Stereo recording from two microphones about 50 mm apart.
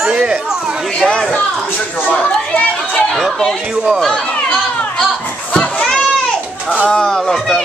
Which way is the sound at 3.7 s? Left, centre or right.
Centre.